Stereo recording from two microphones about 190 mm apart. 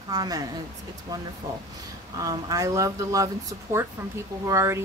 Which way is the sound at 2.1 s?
20° right (ahead or behind).